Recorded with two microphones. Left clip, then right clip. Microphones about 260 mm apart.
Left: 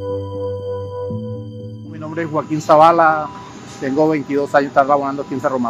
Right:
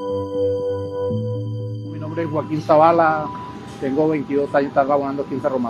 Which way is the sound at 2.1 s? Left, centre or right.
Left.